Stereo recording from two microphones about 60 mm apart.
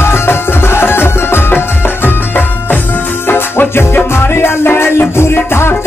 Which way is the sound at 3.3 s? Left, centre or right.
Left.